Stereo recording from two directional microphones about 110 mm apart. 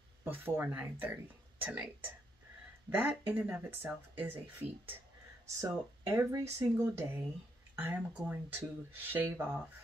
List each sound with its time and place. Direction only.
0.2 s speech: 15° right (ahead or behind)
2.9 s speech: 15° right (ahead or behind)